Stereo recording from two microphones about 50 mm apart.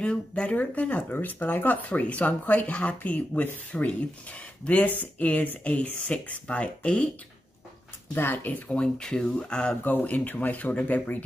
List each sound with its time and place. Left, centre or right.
0.0 s speech: left
1.9 s speech: left
8.1 s speech: left
8.6 s speech: centre
10.0 s speech: left